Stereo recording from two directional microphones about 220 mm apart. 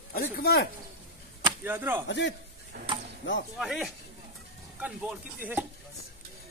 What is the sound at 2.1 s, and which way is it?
Speech, 55° left (ahead or behind).